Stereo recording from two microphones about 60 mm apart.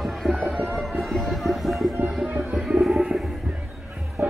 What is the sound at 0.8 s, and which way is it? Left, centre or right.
Music, centre.